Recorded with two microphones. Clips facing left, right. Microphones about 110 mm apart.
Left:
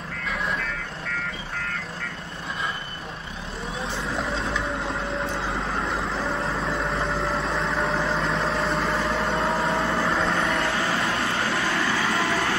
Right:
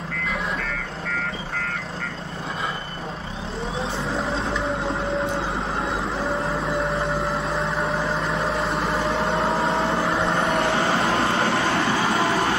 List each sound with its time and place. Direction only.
6.3 s vehicle: centre (ahead or behind)
8.8 s vehicle: 25° right (ahead or behind)